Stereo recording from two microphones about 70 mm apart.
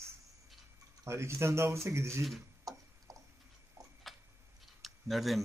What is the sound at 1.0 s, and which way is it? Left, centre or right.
Speech, right.